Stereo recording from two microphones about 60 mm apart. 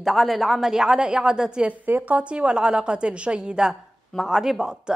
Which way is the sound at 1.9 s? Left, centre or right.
Right.